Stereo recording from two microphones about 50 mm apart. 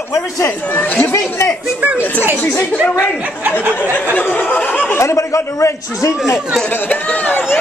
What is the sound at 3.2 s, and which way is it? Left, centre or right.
Speech, right.